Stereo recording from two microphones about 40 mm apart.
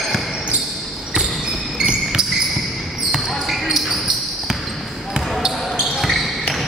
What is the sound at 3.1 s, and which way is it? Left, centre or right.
Basketball bounce, centre.